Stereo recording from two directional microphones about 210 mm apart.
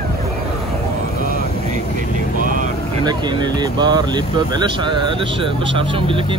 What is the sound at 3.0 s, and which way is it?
Speech, 20° right (ahead or behind).